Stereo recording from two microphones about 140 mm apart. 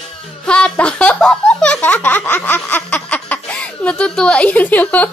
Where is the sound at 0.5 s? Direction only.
5° left (ahead or behind).